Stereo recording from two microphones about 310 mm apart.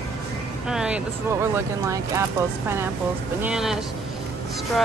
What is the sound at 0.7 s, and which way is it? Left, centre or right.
Speech, centre.